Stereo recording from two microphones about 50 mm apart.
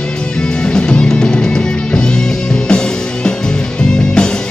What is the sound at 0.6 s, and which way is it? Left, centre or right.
Music, centre.